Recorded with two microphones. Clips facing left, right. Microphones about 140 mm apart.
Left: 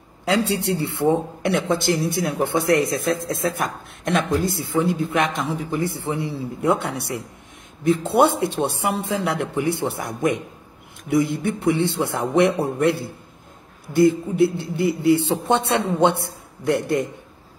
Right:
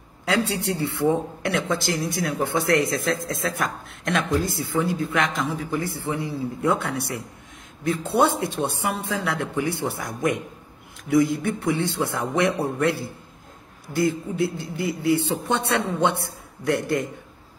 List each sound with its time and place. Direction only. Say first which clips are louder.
1.4 s speech: left 4 dB; 30° left (ahead or behind)